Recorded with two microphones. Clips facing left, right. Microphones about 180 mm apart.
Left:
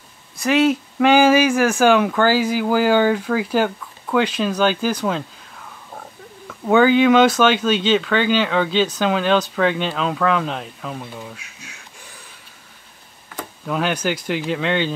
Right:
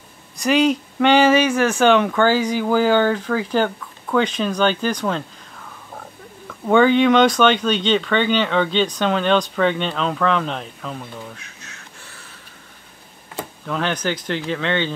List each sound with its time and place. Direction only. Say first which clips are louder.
0.4 s speech: even; centre (ahead or behind)
13.3 s a sound: right 2 dB; 25° right (ahead or behind)
13.7 s speech: left 2 dB; 10° left (ahead or behind)